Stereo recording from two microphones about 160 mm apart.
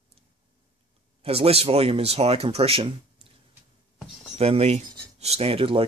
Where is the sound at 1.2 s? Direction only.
35° right (ahead or behind).